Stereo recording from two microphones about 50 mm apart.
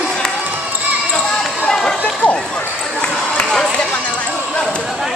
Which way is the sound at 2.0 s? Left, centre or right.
Left.